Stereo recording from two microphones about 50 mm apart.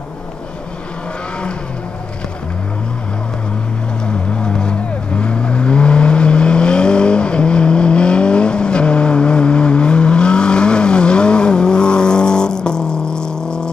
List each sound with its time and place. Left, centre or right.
4.0 s vehicle: centre